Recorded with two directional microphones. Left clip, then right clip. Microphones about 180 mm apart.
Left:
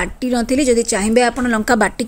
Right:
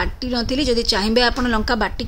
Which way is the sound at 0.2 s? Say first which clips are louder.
Left 8 dB; 20° left (ahead or behind).